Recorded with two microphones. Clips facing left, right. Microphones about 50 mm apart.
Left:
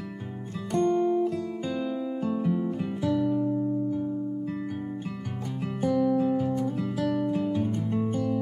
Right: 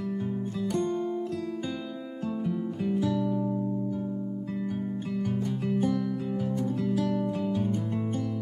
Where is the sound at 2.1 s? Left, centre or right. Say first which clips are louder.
Even; centre.